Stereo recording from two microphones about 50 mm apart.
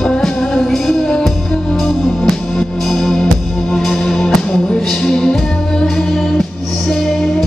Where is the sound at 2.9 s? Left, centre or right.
Centre.